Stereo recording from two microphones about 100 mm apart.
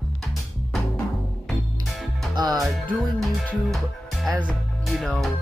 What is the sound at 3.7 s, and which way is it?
Speech, centre (ahead or behind).